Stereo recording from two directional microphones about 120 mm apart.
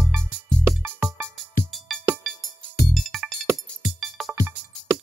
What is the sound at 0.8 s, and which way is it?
Music, 15° right (ahead or behind).